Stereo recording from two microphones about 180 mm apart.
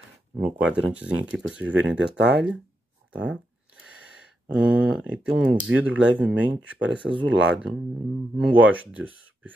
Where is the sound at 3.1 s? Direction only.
5° right (ahead or behind).